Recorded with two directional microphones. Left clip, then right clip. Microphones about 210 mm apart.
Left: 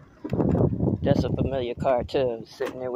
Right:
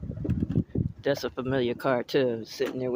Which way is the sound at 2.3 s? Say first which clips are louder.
Even; 25° right (ahead or behind).